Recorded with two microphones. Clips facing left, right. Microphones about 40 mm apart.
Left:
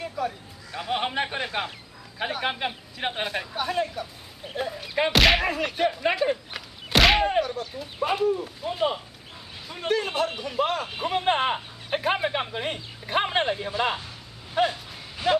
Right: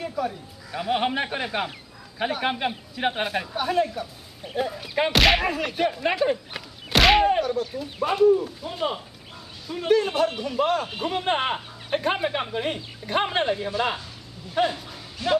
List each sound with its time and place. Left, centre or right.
0.0 s speech: centre
11.3 s speech: centre
15.2 s speech: centre